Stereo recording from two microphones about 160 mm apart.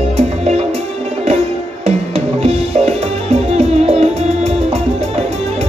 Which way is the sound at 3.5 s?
40° right (ahead or behind).